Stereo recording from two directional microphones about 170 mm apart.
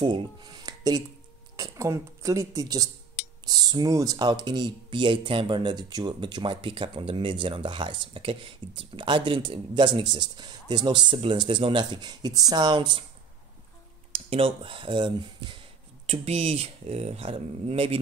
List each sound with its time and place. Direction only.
0.0 s speech: 25° right (ahead or behind)
14.1 s speech: 35° right (ahead or behind)